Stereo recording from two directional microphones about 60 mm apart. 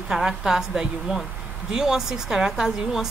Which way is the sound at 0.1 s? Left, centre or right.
Centre.